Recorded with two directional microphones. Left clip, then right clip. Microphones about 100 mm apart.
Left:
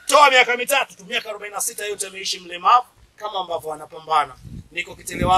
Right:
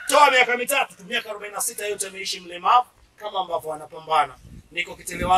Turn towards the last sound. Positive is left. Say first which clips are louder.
# left 3 dB
turn(degrees=15)  # may be behind; listen again after turning